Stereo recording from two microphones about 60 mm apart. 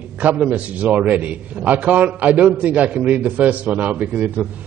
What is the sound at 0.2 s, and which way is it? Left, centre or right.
A man's voice, right.